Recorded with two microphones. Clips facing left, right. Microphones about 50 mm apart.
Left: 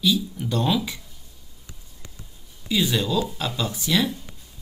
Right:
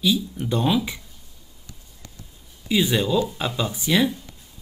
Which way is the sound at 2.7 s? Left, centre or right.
Centre.